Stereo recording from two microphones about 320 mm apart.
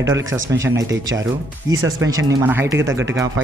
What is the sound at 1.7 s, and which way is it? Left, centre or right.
Speech, right.